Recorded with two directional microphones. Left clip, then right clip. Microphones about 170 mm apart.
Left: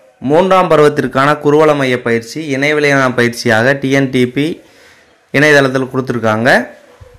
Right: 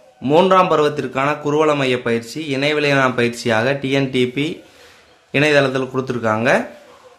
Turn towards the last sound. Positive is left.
turn(degrees=25)  # may be behind; listen again after turning